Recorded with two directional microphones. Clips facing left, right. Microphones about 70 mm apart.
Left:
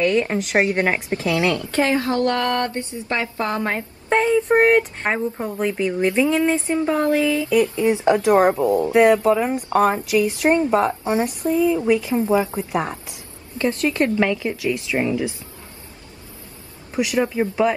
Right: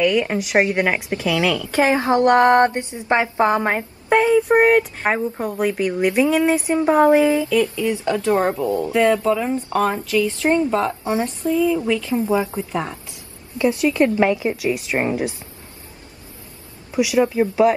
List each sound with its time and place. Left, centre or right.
0.0 s speech: centre
1.7 s speech: centre
4.1 s a woman's voice: centre
7.4 s speech: left
13.6 s a woman's voice: centre
14.0 s speech: centre
16.9 s speech: centre